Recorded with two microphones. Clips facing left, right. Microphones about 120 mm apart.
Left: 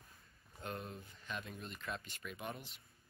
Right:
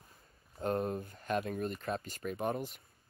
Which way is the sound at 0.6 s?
45° right (ahead or behind).